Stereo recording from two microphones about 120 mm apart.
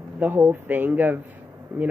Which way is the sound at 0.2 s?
15° right (ahead or behind).